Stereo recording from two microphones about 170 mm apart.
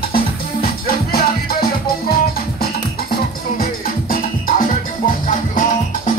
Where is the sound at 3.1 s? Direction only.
60° left (ahead or behind).